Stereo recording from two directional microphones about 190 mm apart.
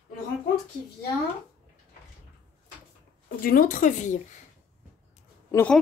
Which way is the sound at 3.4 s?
45° left (ahead or behind).